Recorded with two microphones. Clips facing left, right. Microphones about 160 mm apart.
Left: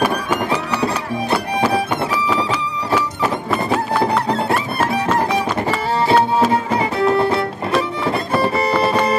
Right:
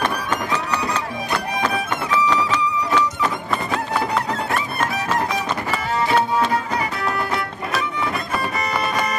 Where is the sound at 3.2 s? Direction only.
5° left (ahead or behind).